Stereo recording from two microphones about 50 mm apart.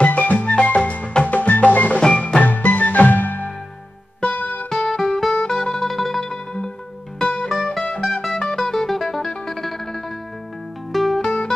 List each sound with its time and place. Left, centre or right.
0.0 s music: left
4.6 s music: centre
6.2 s music: centre
7.4 s music: centre
11.1 s music: centre